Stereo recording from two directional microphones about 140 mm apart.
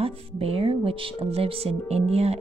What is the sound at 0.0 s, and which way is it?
Speech, 45° right (ahead or behind).